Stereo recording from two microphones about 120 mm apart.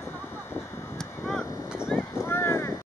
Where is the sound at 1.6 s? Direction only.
5° right (ahead or behind).